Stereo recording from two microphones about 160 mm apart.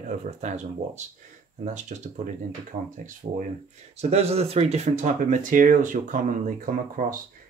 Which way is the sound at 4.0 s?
40° right (ahead or behind).